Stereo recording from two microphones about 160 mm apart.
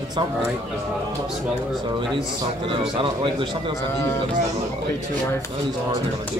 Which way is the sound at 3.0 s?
30° right (ahead or behind).